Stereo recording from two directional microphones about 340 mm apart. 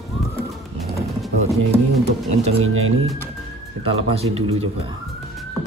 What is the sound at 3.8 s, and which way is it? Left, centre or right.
Speech, centre.